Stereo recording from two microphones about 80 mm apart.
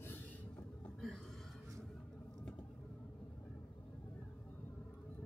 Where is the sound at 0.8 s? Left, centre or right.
Centre.